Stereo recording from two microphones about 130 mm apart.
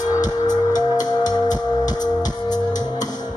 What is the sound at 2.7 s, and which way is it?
Music, 70° left (ahead or behind).